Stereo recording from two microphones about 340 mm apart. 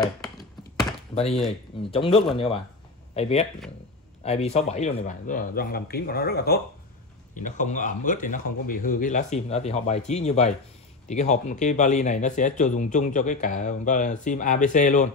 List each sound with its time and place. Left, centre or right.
0.2 s computer keyboard: centre
1.1 s speech: centre